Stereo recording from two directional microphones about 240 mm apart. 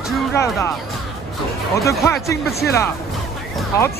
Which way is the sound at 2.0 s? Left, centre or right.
Centre.